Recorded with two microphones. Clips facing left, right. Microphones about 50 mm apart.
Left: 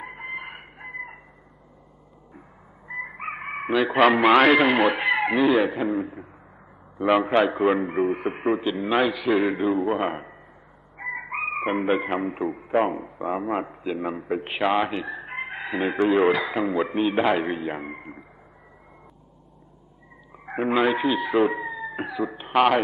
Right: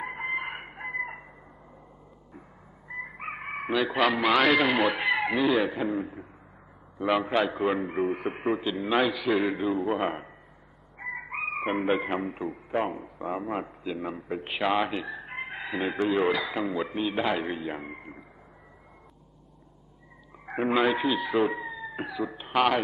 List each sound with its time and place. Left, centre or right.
0.1 s chicken: centre
3.0 s chicken: centre
3.7 s speech: centre
7.2 s a man's voice: centre
7.5 s a man's voice: centre
11.0 s chicken: centre
11.3 s chicken: centre
12.4 s speech: centre
13.9 s chicken: centre
16.0 s speech: centre
17.6 s a man's voice: centre
20.4 s speech: centre